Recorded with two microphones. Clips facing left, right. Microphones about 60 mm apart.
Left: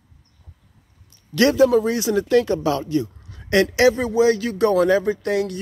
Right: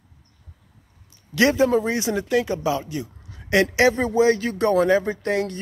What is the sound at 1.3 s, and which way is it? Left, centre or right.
Speech, right.